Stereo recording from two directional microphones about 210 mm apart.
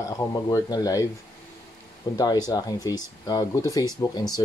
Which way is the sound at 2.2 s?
20° left (ahead or behind).